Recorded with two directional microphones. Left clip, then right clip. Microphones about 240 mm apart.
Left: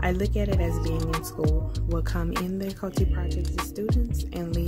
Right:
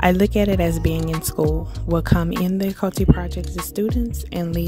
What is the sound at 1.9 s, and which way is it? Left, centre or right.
Speech, right.